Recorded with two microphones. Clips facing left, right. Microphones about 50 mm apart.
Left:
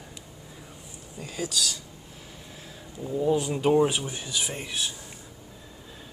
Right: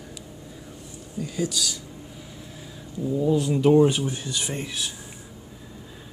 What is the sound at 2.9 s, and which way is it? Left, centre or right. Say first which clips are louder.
Speech: right 2 dB; centre.